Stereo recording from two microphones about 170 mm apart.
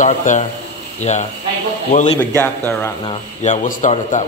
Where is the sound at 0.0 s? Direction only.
45° left (ahead or behind).